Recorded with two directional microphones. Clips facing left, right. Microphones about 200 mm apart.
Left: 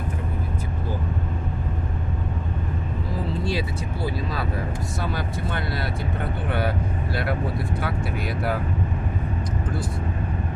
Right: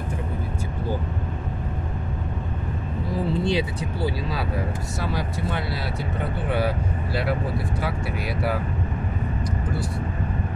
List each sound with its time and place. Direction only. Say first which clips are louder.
3.4 s vehicle: right 3 dB; 15° right (ahead or behind)